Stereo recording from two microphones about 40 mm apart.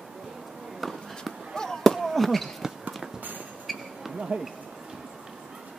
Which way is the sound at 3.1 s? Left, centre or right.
Right.